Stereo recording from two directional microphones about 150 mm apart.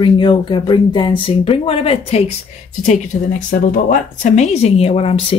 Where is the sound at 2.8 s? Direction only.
60° left (ahead or behind).